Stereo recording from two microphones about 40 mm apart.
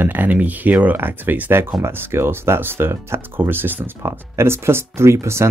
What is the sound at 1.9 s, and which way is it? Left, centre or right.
Speech, right.